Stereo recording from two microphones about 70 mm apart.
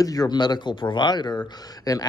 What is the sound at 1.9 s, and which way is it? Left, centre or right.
Speech, left.